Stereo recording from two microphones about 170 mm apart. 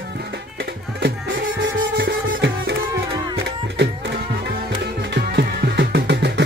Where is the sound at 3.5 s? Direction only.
85° right.